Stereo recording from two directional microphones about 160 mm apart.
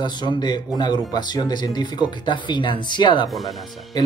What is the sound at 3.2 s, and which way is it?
Speech, centre (ahead or behind).